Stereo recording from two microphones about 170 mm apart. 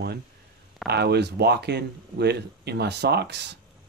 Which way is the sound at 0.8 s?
70° right (ahead or behind).